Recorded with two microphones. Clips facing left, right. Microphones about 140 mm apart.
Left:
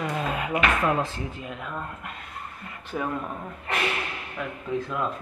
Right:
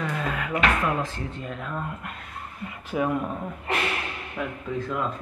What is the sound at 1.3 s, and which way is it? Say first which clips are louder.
Speech: right 2 dB; 5° left (ahead or behind).